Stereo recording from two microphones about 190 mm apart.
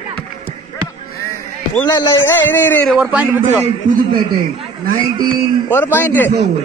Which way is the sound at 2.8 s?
5° right (ahead or behind).